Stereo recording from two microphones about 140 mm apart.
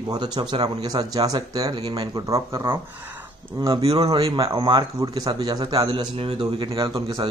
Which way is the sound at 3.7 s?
45° right (ahead or behind).